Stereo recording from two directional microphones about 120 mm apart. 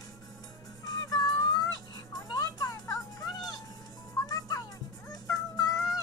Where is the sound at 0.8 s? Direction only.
30° left (ahead or behind).